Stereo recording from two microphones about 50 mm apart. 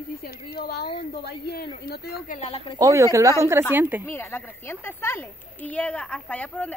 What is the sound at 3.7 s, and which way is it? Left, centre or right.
Speech, right.